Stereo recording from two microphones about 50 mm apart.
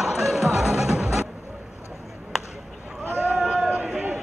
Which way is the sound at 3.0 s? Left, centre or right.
Right.